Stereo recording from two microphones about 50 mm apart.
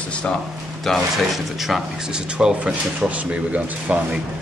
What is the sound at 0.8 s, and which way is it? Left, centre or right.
Speech, centre.